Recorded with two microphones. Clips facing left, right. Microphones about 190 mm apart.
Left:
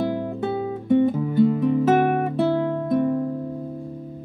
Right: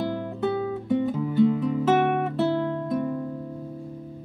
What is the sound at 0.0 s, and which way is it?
Guitar, 20° left (ahead or behind).